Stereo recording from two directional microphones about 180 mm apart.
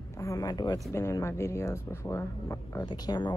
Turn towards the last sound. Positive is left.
turn(degrees=25)  # may be behind; listen again after turning